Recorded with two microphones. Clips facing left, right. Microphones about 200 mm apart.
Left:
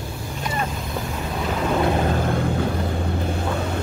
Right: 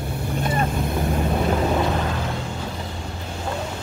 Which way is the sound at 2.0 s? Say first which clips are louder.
Left 5 dB; 50° left (ahead or behind).